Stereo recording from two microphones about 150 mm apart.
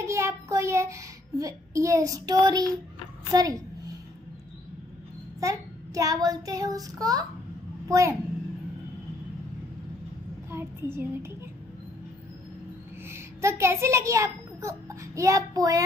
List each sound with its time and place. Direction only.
0.0 s a child's voice: 20° right (ahead or behind)
5.4 s child singing: 20° right (ahead or behind)
10.5 s speech: 15° right (ahead or behind)
13.1 s a child's voice: 20° right (ahead or behind)